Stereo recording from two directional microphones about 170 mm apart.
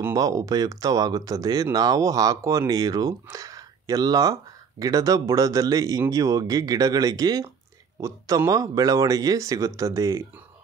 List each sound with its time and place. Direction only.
0.0 s speech: 20° right (ahead or behind)